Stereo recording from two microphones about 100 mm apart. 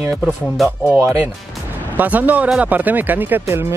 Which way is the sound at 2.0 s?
15° right (ahead or behind).